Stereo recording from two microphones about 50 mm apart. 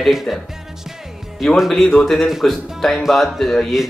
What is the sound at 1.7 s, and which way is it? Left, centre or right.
Speech, centre.